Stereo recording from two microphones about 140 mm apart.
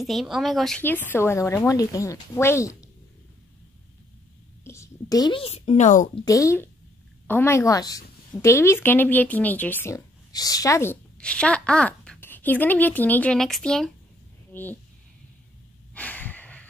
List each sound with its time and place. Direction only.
0.0 s speech: centre (ahead or behind)
0.8 s speech: 15° left (ahead or behind)
4.6 s a sound: 20° left (ahead or behind)
5.2 s a woman's voice: 40° left (ahead or behind); by 6.0 s 60° left (ahead or behind)
6.2 s speech: 25° left (ahead or behind)
11.1 s a woman's voice: 10° left (ahead or behind)
15.9 s snort: 10° left (ahead or behind)